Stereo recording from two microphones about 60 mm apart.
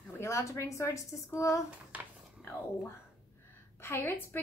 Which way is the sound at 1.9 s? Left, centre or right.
Right.